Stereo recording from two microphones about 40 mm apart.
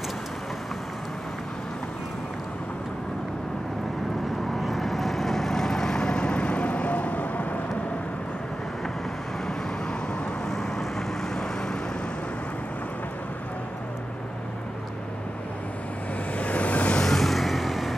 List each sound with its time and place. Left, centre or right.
4.6 s vehicle: centre; by 7.4 s left
10.5 s vehicle: centre
16.3 s a sound: left
17.0 s vehicle: centre